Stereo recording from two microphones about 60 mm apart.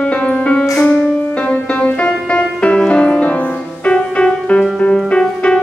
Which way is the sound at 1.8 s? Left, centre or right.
Centre.